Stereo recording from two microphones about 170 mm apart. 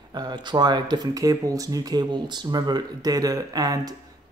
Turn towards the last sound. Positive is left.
turn(degrees=-20)  # may be behind; listen again after turning